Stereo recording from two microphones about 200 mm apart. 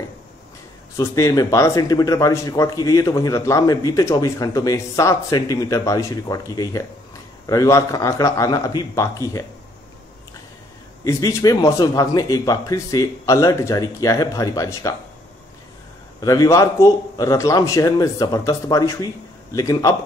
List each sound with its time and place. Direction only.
0.9 s a man's voice: 15° left (ahead or behind)
11.1 s a man's voice: 15° left (ahead or behind)
16.2 s a man's voice: 15° left (ahead or behind)